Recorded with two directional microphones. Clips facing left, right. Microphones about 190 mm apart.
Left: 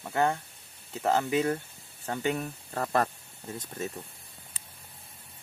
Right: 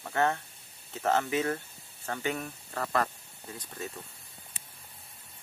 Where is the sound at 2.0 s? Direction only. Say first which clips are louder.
Left 3 dB; 25° left (ahead or behind).